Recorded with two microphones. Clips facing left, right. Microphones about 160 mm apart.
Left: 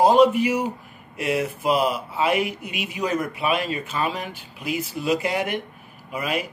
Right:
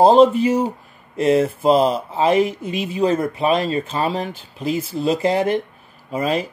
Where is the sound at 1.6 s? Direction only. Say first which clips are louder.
Right 6 dB; 35° right (ahead or behind).